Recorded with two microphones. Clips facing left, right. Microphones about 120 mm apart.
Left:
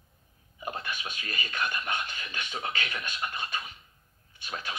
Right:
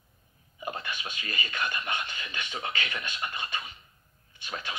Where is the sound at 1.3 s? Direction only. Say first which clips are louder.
Even; 45° left (ahead or behind).